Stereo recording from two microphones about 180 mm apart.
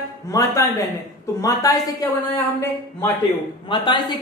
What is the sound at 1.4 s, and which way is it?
A man's voice, 20° left (ahead or behind).